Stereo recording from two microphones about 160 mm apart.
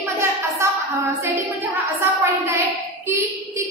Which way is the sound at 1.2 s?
15° right (ahead or behind).